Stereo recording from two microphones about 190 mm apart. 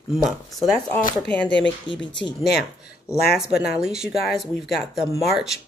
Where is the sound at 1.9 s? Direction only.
25° left (ahead or behind).